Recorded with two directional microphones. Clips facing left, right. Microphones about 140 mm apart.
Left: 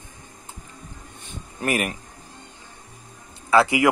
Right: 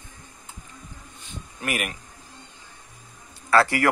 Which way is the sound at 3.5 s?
15° left (ahead or behind).